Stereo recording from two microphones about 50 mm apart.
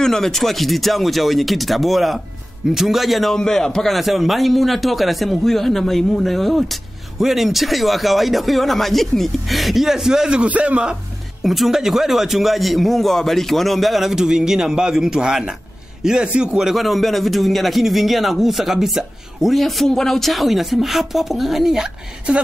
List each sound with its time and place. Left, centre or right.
0.0 s speech: centre
3.3 s a man's voice: centre
3.9 s speech: centre
10.4 s a man's voice: right
11.4 s a man's voice: centre
16.3 s a man's voice: right
16.5 s speech: centre
22.3 s a man's voice: right